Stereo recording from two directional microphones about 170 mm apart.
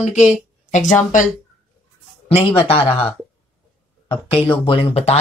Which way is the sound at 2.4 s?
35° left (ahead or behind).